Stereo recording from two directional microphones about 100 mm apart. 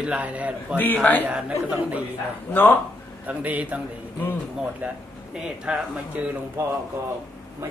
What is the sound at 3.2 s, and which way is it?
Speech, 15° right (ahead or behind).